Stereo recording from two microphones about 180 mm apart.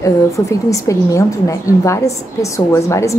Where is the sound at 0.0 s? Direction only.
15° left (ahead or behind).